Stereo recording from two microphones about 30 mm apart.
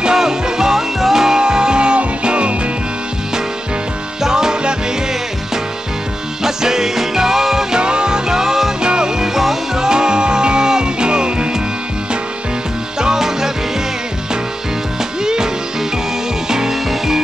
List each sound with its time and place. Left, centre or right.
0.0 s music: centre
1.4 s music: right
4.2 s music: right
6.4 s music: centre
7.7 s music: right
8.8 s music: right; by 9.6 s centre
9.8 s music: right
13.0 s music: centre
15.2 s music: right